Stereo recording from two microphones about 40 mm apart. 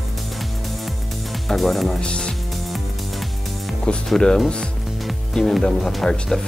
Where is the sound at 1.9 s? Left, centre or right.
Left.